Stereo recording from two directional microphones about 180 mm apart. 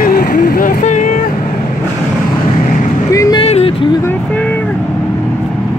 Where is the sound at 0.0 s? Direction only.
55° left (ahead or behind).